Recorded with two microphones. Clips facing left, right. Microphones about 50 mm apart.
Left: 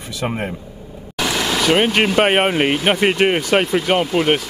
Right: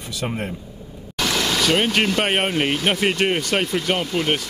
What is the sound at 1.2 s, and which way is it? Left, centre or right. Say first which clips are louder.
Speech: left 2 dB; centre.